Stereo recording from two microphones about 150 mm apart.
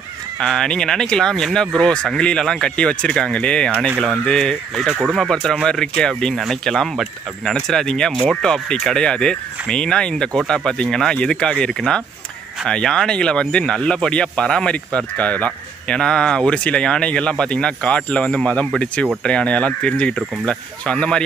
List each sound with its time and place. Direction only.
0.4 s speech: 5° left (ahead or behind)